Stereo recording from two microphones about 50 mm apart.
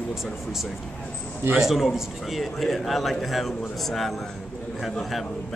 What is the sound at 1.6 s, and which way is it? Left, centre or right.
A man's voice, centre.